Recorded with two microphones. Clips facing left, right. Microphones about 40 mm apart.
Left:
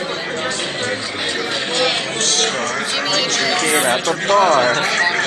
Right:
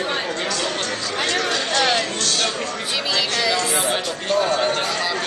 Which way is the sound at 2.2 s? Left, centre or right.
Left.